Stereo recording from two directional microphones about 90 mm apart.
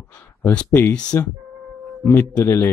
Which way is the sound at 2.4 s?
25° left (ahead or behind).